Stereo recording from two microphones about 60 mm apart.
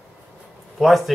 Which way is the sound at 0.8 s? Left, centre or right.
Centre.